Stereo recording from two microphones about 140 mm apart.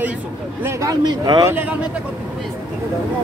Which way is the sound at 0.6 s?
25° right (ahead or behind).